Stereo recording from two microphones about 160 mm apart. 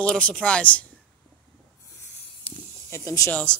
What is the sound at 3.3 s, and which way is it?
Speech, 10° left (ahead or behind).